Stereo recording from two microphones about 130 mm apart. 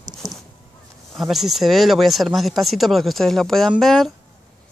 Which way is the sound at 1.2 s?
Centre (ahead or behind).